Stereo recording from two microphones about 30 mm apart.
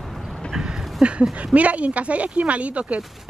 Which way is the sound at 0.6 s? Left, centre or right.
Right.